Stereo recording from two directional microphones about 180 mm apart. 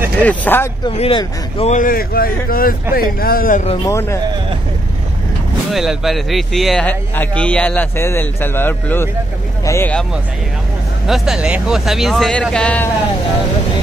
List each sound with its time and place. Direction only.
0.2 s speech: 10° left (ahead or behind)
0.8 s speech: 30° left (ahead or behind)
1.8 s a man's voice: 50° left (ahead or behind)
3.8 s speech: 15° left (ahead or behind)
5.7 s speech: centre (ahead or behind)
11.1 s speech: centre (ahead or behind)